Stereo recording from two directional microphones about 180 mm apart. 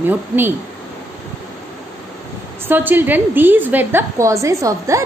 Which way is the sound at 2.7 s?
10° right (ahead or behind).